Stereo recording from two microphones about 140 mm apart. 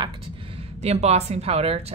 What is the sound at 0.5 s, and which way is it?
A woman's voice, 50° right (ahead or behind).